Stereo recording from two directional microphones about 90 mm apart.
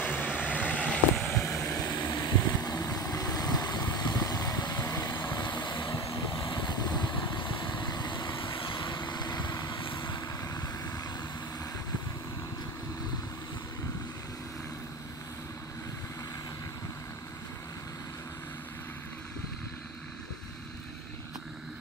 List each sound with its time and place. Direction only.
0.0 s vehicle: 20° left (ahead or behind)
1.6 s vehicle: 30° left (ahead or behind)
1.9 s vehicle: 55° left (ahead or behind)
5.3 s vehicle: 55° left (ahead or behind)
5.9 s vehicle: 40° left (ahead or behind)
6.2 s vehicle: 65° left (ahead or behind)
10.2 s vehicle: 40° left (ahead or behind)